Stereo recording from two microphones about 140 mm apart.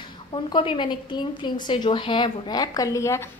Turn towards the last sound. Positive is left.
turn(degrees=20)  # may be behind; listen again after turning